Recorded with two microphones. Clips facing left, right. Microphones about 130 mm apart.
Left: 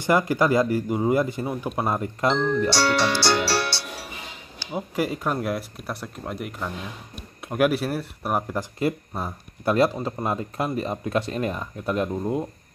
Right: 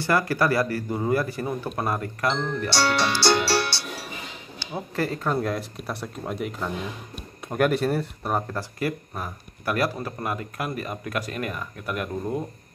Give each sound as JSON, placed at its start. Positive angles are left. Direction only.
{"t": 0.0, "sound": "speech", "side_deg": 20}
{"t": 2.7, "sound": "speech", "side_deg": 5}
{"t": 4.7, "sound": "speech", "side_deg": 15}
{"t": 8.7, "sound": "speech", "side_deg": 25}